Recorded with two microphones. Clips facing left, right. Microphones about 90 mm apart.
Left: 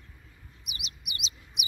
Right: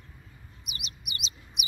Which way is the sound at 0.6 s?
45° right (ahead or behind).